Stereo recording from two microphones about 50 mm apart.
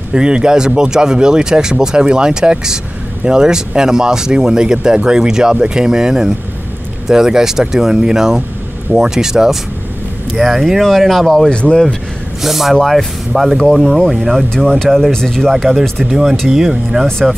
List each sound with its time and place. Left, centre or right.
0.1 s speech: centre
11.5 s speech: left
12.4 s speech: centre
14.5 s speech: centre
16.1 s speech: centre